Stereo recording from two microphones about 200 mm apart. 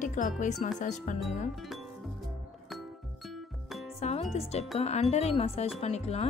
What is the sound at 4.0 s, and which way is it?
Music, 30° left (ahead or behind).